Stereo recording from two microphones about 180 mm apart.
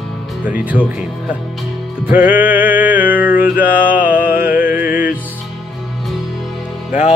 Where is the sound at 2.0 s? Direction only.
50° left (ahead or behind).